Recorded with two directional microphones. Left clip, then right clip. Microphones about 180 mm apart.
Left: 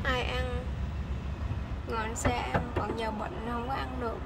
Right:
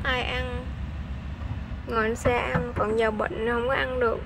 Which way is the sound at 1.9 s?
20° right (ahead or behind).